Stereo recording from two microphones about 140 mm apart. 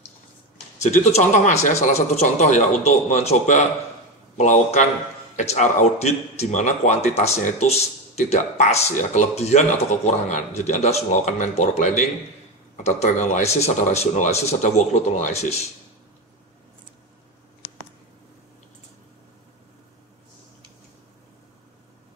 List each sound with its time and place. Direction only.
0.9 s speech: 60° left (ahead or behind)